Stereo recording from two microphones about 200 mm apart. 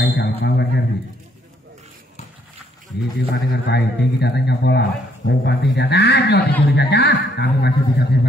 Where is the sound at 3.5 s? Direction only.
55° left (ahead or behind).